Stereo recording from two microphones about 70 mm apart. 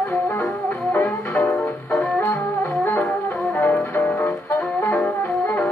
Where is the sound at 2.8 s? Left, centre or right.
Left.